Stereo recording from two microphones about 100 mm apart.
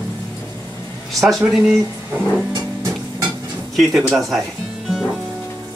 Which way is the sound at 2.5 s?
40° right (ahead or behind).